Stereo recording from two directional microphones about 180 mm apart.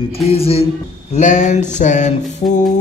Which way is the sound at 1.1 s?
45° left (ahead or behind).